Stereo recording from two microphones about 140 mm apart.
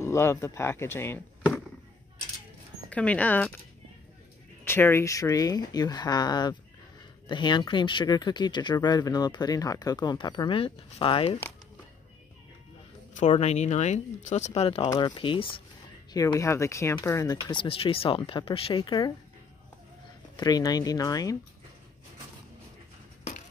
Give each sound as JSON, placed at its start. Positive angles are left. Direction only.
{"t": 0.0, "sound": "speech", "side_deg": 20}
{"t": 2.9, "sound": "speech", "side_deg": 10}
{"t": 4.6, "sound": "speech", "side_deg": 15}
{"t": 13.1, "sound": "speech", "side_deg": 55}
{"t": 14.8, "sound": "speech", "side_deg": 30}
{"t": 16.1, "sound": "speech", "side_deg": 25}
{"t": 17.5, "sound": "speech", "side_deg": 40}
{"t": 20.3, "sound": "speech", "side_deg": 30}